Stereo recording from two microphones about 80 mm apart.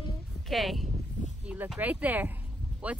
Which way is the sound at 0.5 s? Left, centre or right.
Centre.